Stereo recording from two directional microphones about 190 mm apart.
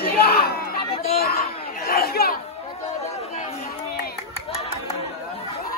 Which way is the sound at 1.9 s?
55° left (ahead or behind).